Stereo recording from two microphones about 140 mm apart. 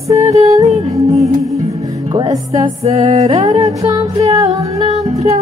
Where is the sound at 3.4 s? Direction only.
25° right (ahead or behind).